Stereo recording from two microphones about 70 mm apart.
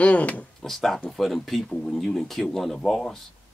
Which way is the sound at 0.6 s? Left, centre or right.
Centre.